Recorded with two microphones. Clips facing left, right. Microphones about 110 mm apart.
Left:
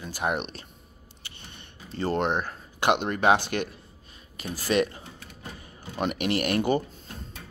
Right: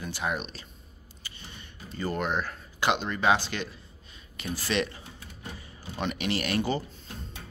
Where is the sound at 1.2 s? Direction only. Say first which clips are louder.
Right 1 dB; 65° left (ahead or behind).